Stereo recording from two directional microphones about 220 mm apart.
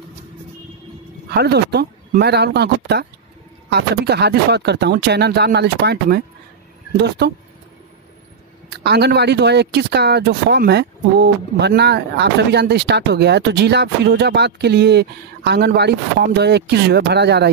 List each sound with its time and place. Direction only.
1.4 s speech: 50° right (ahead or behind)
8.6 s speech: 50° right (ahead or behind)